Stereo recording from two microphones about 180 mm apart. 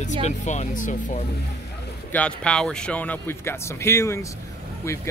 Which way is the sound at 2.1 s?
5° left (ahead or behind).